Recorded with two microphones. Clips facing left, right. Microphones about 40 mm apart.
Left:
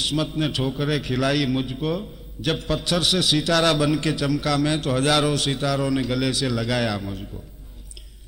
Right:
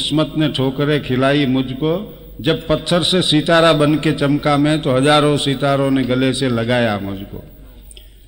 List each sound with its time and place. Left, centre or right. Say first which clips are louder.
0.0 s a man's voice: right 7 dB; right